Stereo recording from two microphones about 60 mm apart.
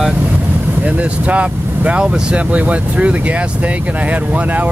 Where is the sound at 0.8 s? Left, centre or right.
Right.